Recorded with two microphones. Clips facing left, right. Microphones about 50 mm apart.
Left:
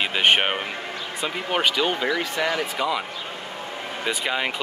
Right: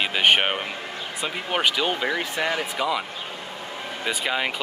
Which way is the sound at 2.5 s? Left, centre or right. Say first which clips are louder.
Even; centre.